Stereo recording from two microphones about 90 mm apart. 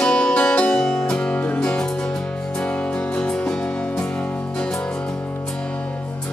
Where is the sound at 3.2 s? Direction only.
10° left (ahead or behind).